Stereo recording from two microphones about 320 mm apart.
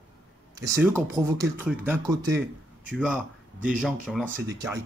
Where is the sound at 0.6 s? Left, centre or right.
Centre.